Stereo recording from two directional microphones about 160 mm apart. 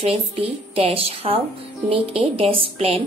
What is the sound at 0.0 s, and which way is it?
A woman's voice, 35° right (ahead or behind).